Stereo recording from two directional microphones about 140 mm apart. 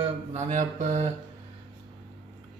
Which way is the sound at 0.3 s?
60° right (ahead or behind).